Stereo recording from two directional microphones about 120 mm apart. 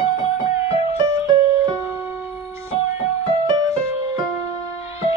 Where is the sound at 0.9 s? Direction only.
35° right (ahead or behind).